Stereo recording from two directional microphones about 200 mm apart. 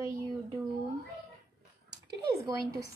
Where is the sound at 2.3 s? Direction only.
15° right (ahead or behind).